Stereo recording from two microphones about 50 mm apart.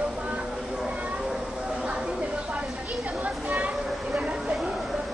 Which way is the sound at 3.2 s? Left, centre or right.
Right.